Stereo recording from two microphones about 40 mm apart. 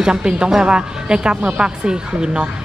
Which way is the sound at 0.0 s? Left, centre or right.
Right.